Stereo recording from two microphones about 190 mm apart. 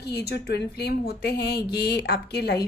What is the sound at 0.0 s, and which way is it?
A woman's voice, 60° left (ahead or behind).